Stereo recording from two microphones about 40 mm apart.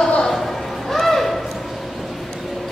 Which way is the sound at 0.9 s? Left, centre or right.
Centre.